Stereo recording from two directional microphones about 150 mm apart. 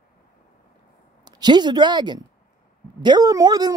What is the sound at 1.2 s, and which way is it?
A woman's voice, 30° right (ahead or behind).